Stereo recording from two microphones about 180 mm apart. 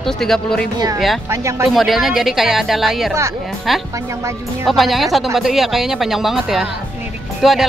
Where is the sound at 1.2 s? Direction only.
15° right (ahead or behind).